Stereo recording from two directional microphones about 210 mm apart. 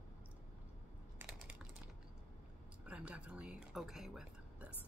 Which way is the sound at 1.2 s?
5° right (ahead or behind).